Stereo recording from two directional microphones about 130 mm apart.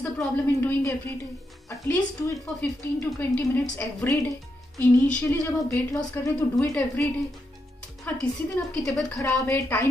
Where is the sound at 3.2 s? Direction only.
15° left (ahead or behind).